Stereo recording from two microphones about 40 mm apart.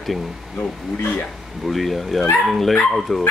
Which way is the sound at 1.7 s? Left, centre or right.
Centre.